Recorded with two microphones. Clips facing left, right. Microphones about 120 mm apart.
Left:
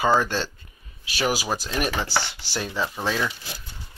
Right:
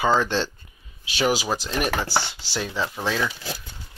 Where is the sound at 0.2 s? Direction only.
5° left (ahead or behind).